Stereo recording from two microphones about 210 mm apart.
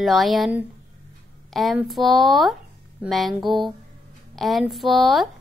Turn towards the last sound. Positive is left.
turn(degrees=0)  # may be behind; listen again after turning